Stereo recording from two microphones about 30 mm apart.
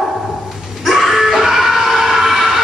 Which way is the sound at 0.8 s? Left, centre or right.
Centre.